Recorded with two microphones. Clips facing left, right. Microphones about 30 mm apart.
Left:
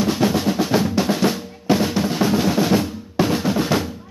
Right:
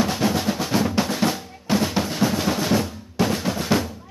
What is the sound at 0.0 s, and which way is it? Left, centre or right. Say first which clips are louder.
Percussion: left 3 dB; centre.